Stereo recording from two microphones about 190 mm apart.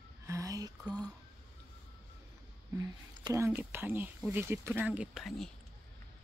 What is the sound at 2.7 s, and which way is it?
Speech, 20° right (ahead or behind).